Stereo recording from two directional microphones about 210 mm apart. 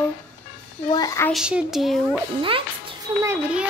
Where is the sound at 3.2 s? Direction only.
10° right (ahead or behind).